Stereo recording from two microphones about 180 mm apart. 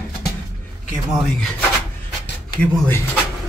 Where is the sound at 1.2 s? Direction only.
5° left (ahead or behind).